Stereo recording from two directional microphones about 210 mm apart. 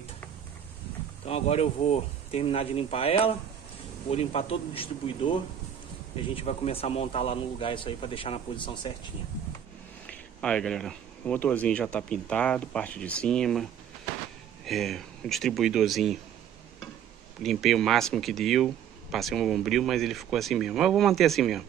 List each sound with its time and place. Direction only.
1.2 s speech: 30° left (ahead or behind)
10.0 s speech: 5° left (ahead or behind)
17.4 s speech: centre (ahead or behind)